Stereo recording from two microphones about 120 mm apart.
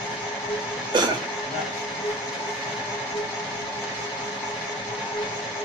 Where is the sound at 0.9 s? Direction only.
40° right (ahead or behind).